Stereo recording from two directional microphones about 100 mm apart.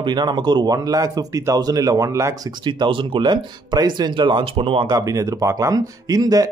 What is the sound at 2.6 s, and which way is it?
A man's voice, 50° right (ahead or behind).